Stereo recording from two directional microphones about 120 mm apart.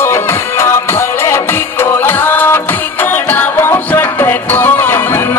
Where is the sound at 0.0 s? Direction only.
20° left (ahead or behind).